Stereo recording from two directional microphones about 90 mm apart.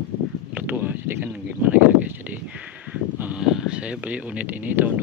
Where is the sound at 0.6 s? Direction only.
20° right (ahead or behind).